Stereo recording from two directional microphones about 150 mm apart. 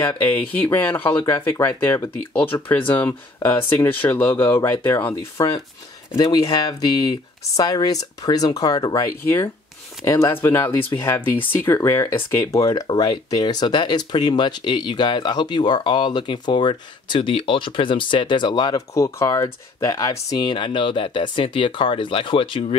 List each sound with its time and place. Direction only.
0.2 s speech: 10° left (ahead or behind); by 9.0 s 25° left (ahead or behind)
10.0 s speech: 20° left (ahead or behind); by 22.8 s 35° left (ahead or behind)